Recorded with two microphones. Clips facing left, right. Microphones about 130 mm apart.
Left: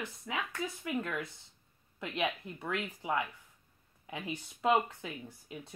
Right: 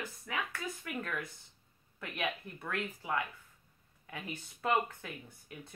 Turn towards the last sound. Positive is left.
turn(degrees=20)  # may be behind; listen again after turning